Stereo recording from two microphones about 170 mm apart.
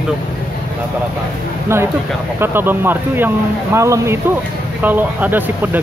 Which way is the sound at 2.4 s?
10° right (ahead or behind).